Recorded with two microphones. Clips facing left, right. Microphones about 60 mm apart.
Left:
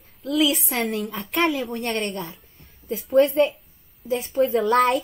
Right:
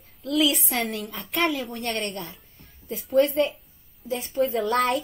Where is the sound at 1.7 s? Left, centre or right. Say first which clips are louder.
Left 3 dB; centre.